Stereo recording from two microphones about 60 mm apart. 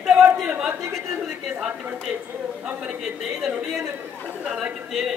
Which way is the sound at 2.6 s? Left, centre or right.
Centre.